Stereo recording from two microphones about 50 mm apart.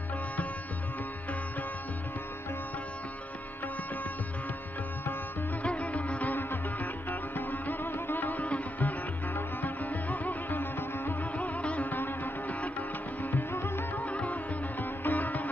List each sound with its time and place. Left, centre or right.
5.6 s music: left
9.6 s sitar: left
11.4 s music: left
14.0 s music: left